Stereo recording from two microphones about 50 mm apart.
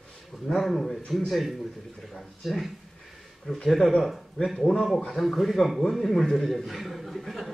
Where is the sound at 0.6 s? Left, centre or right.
Centre.